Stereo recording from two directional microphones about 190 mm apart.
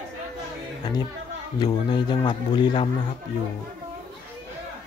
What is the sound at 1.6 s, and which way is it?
A man's voice, 25° left (ahead or behind).